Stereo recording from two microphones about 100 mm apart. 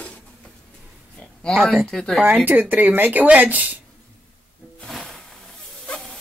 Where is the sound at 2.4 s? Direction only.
20° right (ahead or behind).